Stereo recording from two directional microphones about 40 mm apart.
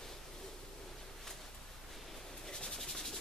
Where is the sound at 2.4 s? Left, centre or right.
Centre.